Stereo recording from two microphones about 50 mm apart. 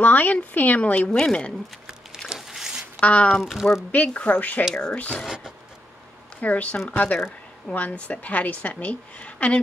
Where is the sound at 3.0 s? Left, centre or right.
Left.